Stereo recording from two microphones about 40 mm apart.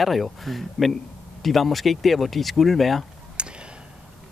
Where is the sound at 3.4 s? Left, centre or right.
Right.